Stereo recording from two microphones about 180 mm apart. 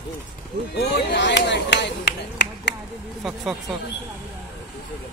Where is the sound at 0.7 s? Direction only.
75° left (ahead or behind).